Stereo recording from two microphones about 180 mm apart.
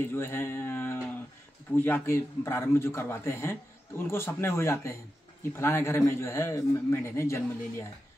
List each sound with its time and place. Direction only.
0.1 s a man's voice: 15° left (ahead or behind)